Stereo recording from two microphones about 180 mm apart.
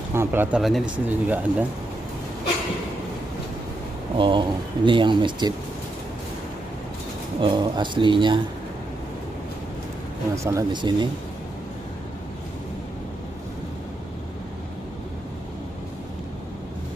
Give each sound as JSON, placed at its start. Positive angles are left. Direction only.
{"t": 0.1, "sound": "speech", "side_deg": -10}
{"t": 4.2, "sound": "speech", "side_deg": -25}
{"t": 7.3, "sound": "speech", "side_deg": -25}
{"t": 10.3, "sound": "speech", "side_deg": -15}